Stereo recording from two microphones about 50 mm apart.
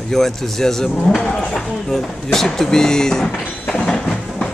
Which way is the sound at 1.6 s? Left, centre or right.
Centre.